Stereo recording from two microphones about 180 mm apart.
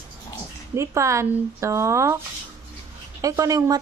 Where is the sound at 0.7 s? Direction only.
15° right (ahead or behind).